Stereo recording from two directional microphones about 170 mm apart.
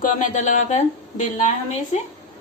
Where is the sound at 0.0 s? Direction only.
45° left (ahead or behind).